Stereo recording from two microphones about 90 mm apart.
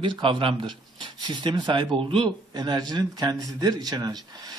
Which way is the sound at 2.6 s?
50° right (ahead or behind).